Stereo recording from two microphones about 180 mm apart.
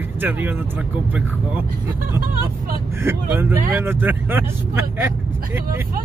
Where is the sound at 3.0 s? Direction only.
15° right (ahead or behind).